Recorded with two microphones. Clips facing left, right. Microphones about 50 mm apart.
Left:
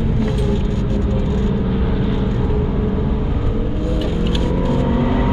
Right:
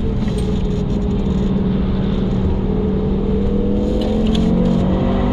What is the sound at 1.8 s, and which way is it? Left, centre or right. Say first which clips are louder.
Vehicle: right 1 dB; centre.